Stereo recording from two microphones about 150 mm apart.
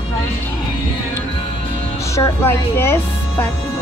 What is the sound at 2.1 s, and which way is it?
Speech, 15° left (ahead or behind).